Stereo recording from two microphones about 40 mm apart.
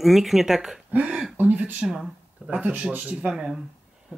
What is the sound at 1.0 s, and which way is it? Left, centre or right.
Speech, right.